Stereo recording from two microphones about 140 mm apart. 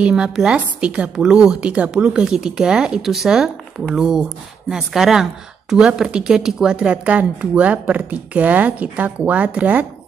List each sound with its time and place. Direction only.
0.0 s a woman's voice: 5° right (ahead or behind)